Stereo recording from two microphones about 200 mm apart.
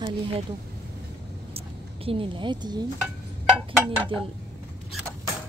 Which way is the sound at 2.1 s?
25° right (ahead or behind).